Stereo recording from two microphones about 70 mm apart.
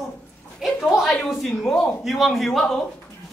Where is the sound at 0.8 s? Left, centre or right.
Centre.